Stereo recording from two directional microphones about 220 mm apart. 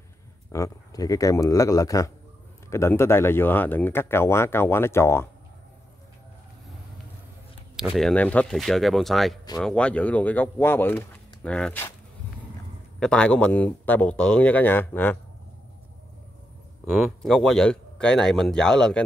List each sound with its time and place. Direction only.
0.5 s speech: 15° left (ahead or behind)
7.7 s speech: centre (ahead or behind)
13.0 s speech: 5° left (ahead or behind)
16.8 s speech: centre (ahead or behind)